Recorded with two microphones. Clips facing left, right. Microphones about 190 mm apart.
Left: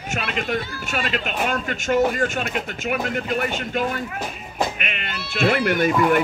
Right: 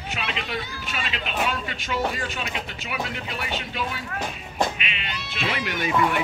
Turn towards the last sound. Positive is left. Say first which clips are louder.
# left 9 dB
turn(degrees=50)  # may be behind; listen again after turning